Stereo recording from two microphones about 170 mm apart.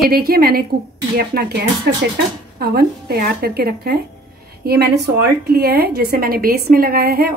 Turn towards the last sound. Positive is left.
turn(degrees=-60)  # may be behind; listen again after turning